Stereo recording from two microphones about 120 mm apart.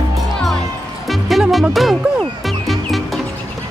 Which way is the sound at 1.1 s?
Centre (ahead or behind).